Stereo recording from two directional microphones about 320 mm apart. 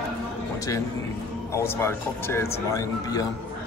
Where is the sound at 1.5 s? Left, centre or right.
Centre.